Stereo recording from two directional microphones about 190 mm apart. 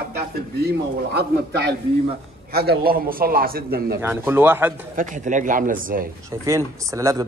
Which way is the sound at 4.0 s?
10° right (ahead or behind).